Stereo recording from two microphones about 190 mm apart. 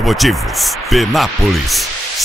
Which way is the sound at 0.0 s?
Centre (ahead or behind).